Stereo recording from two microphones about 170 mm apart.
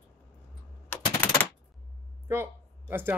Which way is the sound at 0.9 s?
10° left (ahead or behind).